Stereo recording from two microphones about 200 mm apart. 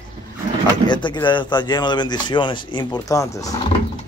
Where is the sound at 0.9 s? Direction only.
25° left (ahead or behind).